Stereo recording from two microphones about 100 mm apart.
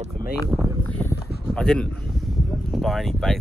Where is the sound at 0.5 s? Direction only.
20° right (ahead or behind).